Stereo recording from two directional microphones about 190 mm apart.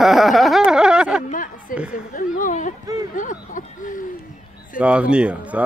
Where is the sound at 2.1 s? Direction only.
45° left (ahead or behind).